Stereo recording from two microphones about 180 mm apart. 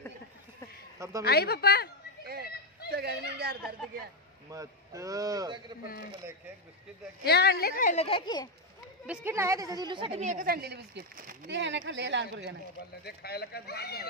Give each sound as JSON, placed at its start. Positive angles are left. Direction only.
{"t": 0.9, "sound": "a woman's voice", "side_deg": -20}
{"t": 1.2, "sound": "speech", "side_deg": 65}
{"t": 2.9, "sound": "speech", "side_deg": -60}
{"t": 4.5, "sound": "a man's voice", "side_deg": -20}
{"t": 7.2, "sound": "speech", "side_deg": 65}
{"t": 9.0, "sound": "a woman's voice", "side_deg": -10}
{"t": 11.4, "sound": "speech", "side_deg": -80}
{"t": 13.0, "sound": "speech", "side_deg": 60}